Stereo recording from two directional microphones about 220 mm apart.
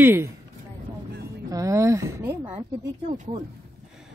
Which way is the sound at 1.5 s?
15° right (ahead or behind).